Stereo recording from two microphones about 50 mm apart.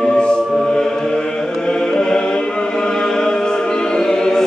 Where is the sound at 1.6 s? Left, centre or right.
Centre.